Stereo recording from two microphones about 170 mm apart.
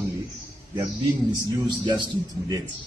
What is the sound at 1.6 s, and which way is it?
Speech, 25° right (ahead or behind).